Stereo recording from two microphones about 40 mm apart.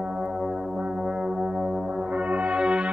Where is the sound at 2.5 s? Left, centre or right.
Right.